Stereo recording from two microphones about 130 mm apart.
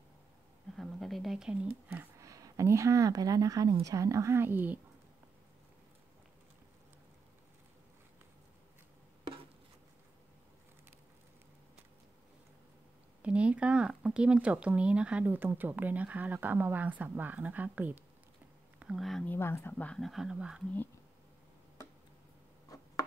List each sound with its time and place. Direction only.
0.7 s a sound: centre (ahead or behind)
2.1 s a woman's voice: 25° right (ahead or behind)
13.2 s speech: 10° right (ahead or behind)
19.2 s speech: 20° left (ahead or behind); by 20.6 s 5° right (ahead or behind)